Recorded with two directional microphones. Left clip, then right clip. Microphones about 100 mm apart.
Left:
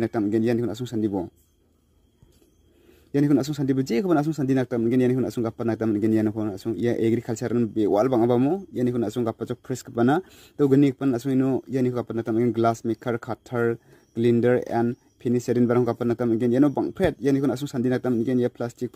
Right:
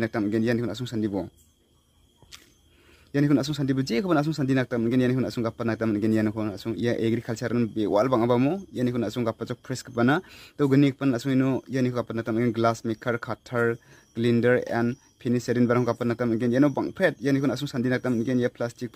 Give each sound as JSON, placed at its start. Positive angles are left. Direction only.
{"t": 0.3, "sound": "speech", "side_deg": 45}
{"t": 3.1, "sound": "speech", "side_deg": 45}